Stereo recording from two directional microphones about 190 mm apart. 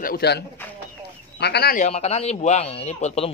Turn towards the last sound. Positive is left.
turn(degrees=35)  # may be behind; listen again after turning